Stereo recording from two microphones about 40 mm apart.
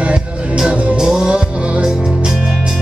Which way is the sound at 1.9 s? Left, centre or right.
Centre.